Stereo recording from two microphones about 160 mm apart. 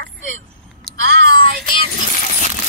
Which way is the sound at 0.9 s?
5° left (ahead or behind).